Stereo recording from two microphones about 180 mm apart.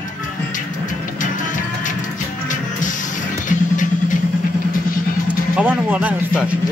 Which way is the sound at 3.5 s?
45° left (ahead or behind).